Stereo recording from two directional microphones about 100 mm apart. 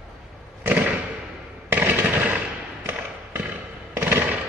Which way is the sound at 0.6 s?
15° right (ahead or behind).